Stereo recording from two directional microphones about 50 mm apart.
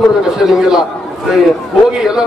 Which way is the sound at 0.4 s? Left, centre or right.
Centre.